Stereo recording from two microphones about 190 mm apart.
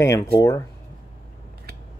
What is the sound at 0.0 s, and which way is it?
Speech, 15° left (ahead or behind).